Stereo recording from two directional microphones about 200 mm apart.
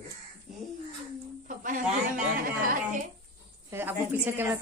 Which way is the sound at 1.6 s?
40° right (ahead or behind).